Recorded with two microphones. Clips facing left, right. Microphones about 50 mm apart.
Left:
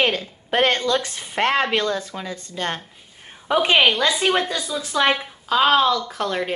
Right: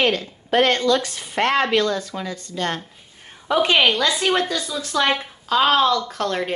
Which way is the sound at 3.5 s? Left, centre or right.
Centre.